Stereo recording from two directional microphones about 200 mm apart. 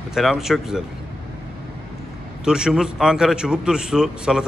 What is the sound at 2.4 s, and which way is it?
Speech, 5° right (ahead or behind).